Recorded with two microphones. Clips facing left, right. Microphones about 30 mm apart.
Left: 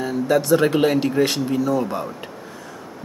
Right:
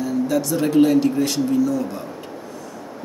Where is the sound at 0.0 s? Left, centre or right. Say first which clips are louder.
Left 1 dB; left.